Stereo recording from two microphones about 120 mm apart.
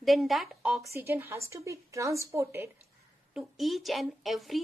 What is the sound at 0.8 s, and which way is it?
A woman's voice, 20° right (ahead or behind).